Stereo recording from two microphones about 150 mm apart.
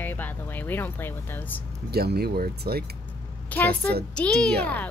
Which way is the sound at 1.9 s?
90° right.